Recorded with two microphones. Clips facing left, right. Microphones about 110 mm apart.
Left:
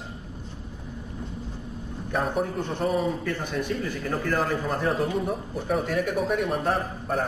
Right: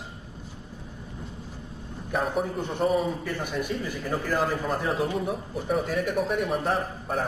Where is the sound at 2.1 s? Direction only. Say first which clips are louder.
Left 1 dB; centre (ahead or behind).